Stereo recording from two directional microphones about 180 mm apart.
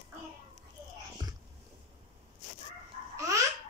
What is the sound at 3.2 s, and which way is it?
Babbling, 20° right (ahead or behind).